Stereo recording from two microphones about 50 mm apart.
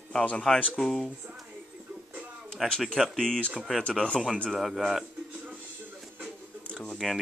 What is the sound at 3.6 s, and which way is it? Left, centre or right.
Speech, centre.